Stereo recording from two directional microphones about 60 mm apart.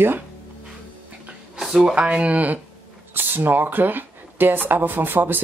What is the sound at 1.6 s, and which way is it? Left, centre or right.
Speech, centre.